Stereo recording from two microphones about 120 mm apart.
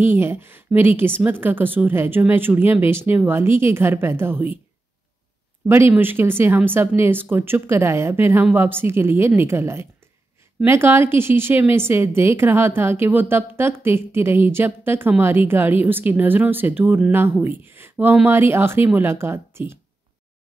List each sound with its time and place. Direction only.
0.0 s a woman's voice: 20° right (ahead or behind)
5.7 s a woman's voice: 20° right (ahead or behind)